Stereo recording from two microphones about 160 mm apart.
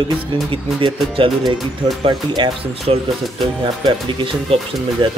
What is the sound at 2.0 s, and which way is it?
Speech, 30° right (ahead or behind).